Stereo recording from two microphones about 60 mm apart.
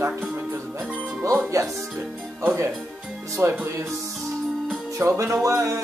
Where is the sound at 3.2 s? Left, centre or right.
Right.